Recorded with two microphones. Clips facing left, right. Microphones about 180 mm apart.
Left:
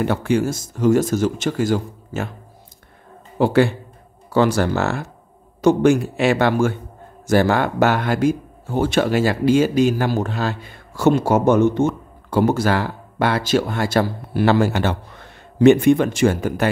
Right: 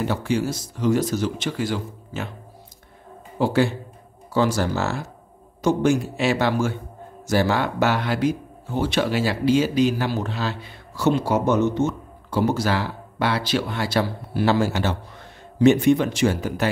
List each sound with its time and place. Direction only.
0.0 s speech: 55° left (ahead or behind)
3.3 s a man's voice: 60° left (ahead or behind)